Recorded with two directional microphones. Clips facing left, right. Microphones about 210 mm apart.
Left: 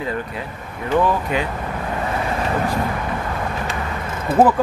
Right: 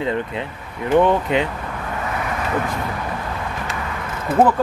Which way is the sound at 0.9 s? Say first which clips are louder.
Right 3 dB; 25° right (ahead or behind).